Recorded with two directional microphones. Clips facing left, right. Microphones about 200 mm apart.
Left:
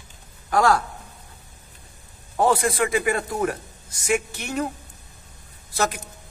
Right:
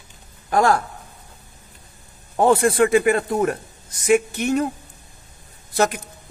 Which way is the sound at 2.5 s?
30° right (ahead or behind).